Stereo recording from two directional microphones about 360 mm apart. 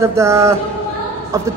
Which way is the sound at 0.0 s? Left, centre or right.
Centre.